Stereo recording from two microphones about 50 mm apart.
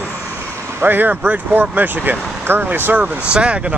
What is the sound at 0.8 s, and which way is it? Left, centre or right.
Speech, right.